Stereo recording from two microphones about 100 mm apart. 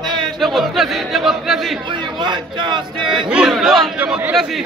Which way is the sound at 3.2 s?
5° right (ahead or behind).